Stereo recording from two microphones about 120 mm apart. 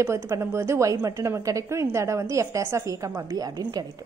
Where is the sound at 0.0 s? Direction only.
25° right (ahead or behind).